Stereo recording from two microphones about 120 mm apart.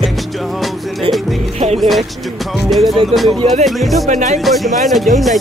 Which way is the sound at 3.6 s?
Centre (ahead or behind).